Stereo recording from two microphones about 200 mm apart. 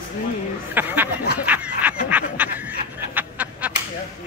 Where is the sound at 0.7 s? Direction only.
10° right (ahead or behind).